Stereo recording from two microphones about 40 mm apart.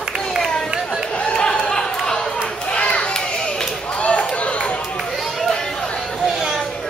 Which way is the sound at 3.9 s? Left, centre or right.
Left.